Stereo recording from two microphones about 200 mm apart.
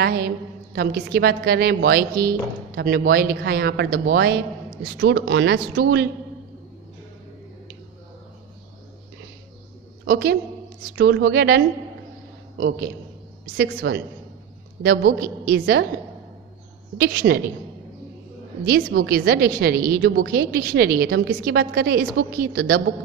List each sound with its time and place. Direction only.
0.0 s a woman's voice: 50° right (ahead or behind)
4.9 s speech: 60° right (ahead or behind)
10.0 s a woman's voice: 50° right (ahead or behind)
11.0 s a woman's voice: 65° right (ahead or behind)
13.7 s speech: 60° right (ahead or behind)
14.8 s a woman's voice: 50° right (ahead or behind)
17.0 s a woman's voice: 45° right (ahead or behind)
18.7 s a woman's voice: 50° right (ahead or behind)